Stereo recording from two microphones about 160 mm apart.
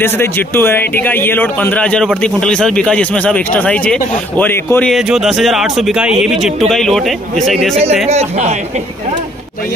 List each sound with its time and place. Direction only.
0.0 s speech: 15° left (ahead or behind)
4.9 s speech: centre (ahead or behind)
7.8 s speech: 40° right (ahead or behind)